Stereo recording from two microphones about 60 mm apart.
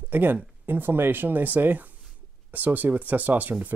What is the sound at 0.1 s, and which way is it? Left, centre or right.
Speech, right.